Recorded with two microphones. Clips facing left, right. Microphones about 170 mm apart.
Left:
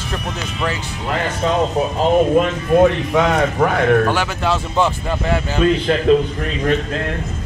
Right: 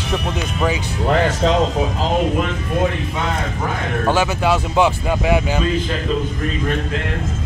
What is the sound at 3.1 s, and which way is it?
Speech, 80° left.